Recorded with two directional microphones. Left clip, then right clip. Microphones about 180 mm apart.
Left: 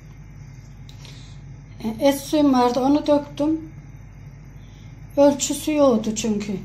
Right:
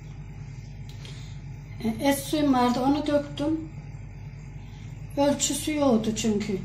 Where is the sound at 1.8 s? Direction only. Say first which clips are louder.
Left 6 dB; 50° left (ahead or behind).